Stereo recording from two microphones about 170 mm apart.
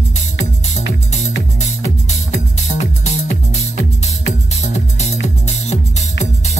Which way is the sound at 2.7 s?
45° left (ahead or behind).